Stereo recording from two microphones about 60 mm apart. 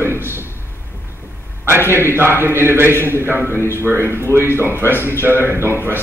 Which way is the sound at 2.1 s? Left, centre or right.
Right.